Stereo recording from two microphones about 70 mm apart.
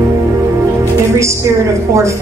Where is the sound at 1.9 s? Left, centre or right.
Right.